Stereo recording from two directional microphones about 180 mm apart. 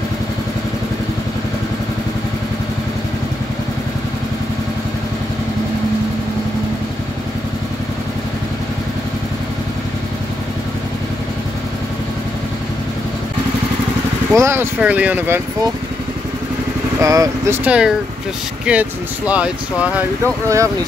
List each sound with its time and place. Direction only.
14.3 s speech: 15° right (ahead or behind)
17.0 s speech: 20° right (ahead or behind)
17.6 s speech: 5° right (ahead or behind)